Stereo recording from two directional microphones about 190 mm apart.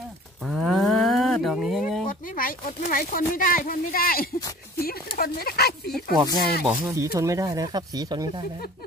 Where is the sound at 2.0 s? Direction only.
45° left (ahead or behind).